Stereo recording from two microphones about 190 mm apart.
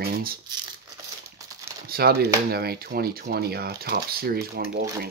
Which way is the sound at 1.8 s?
50° right (ahead or behind).